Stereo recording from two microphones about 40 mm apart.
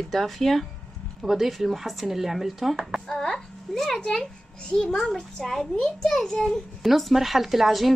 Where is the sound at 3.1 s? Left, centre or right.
Centre.